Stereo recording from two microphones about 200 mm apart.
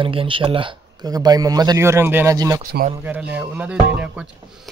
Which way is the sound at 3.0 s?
5° right (ahead or behind).